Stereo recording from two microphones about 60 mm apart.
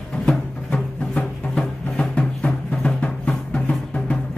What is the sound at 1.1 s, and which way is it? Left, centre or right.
Music, centre.